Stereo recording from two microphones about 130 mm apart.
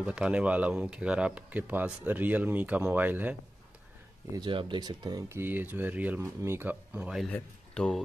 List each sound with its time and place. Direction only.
0.0 s speech: 5° right (ahead or behind)
4.3 s speech: 40° right (ahead or behind)
5.3 s speech: 15° right (ahead or behind); by 8.0 s 5° left (ahead or behind)